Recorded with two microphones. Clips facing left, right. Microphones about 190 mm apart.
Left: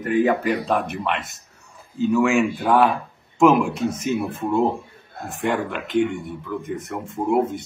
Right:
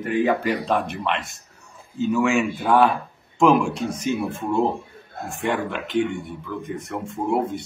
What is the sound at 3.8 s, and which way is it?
Speech, 25° left (ahead or behind).